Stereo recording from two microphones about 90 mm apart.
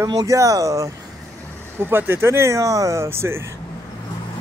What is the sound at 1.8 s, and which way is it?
Speech, 25° right (ahead or behind).